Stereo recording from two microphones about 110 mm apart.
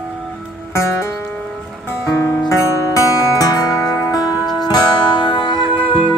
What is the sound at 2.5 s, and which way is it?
Music, 30° left (ahead or behind).